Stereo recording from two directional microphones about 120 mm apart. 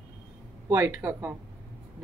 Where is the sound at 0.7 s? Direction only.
20° right (ahead or behind).